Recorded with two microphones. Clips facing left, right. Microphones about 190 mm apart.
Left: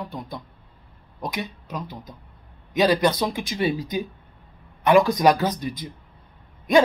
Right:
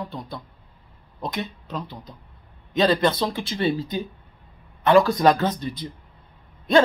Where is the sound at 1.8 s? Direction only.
45° left (ahead or behind).